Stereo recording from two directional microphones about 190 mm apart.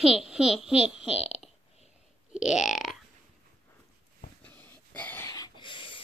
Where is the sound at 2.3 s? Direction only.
5° right (ahead or behind).